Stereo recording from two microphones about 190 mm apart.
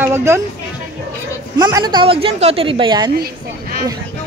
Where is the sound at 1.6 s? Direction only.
20° right (ahead or behind).